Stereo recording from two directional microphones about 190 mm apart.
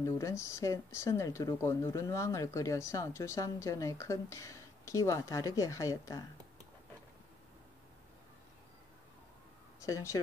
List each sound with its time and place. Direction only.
0.0 s speech: 15° left (ahead or behind)
9.8 s speech: 15° left (ahead or behind)